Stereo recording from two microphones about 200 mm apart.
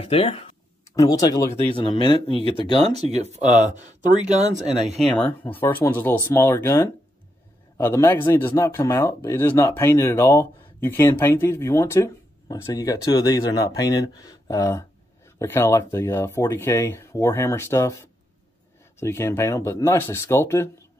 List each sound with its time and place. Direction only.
0.0 s speech: 30° left (ahead or behind)
0.8 s speech: 15° left (ahead or behind)
2.3 s speech: 30° left (ahead or behind)
2.9 s speech: 30° right (ahead or behind)
5.2 s speech: 10° left (ahead or behind)
18.9 s speech: 10° left (ahead or behind)